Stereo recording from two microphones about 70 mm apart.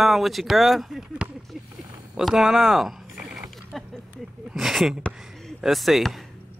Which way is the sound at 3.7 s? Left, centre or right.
Centre.